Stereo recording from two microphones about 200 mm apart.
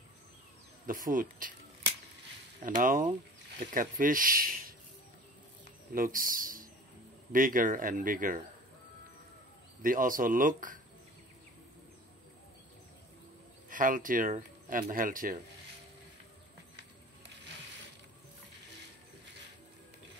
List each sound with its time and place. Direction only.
0.8 s speech: 45° right (ahead or behind)
2.6 s speech: 40° right (ahead or behind)
5.9 s speech: 45° right (ahead or behind)
9.8 s speech: 45° right (ahead or behind)
13.7 s speech: 40° right (ahead or behind)